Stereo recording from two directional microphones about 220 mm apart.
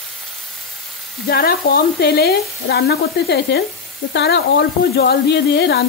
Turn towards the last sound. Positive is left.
turn(degrees=50)  # may be behind; listen again after turning